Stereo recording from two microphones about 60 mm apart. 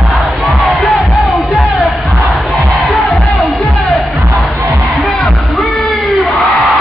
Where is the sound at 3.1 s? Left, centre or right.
Left.